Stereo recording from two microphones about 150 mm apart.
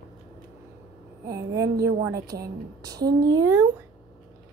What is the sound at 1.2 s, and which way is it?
A child's voice, 20° right (ahead or behind).